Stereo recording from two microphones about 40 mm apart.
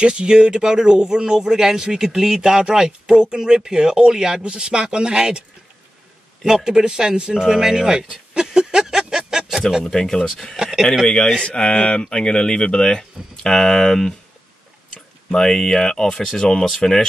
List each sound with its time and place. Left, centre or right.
0.0 s speech: right
6.4 s speech: centre
9.8 s speech: centre
15.3 s speech: centre